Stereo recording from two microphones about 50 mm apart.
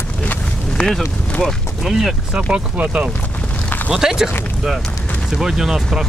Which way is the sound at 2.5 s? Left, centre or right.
Right.